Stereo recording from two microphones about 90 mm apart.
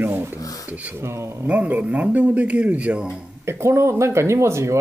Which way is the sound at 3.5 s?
30° right (ahead or behind).